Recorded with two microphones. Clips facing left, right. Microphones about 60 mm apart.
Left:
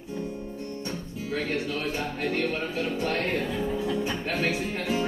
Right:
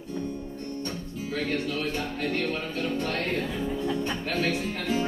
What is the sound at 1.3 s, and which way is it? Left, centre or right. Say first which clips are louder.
Speech: even; centre.